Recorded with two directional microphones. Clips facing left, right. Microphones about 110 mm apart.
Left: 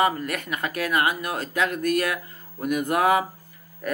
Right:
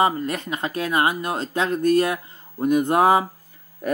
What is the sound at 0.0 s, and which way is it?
Speech, 25° right (ahead or behind).